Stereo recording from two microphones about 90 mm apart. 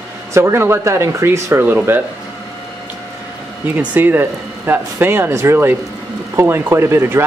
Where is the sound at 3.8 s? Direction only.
20° right (ahead or behind).